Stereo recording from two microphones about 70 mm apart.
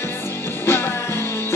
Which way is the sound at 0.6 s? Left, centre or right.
Left.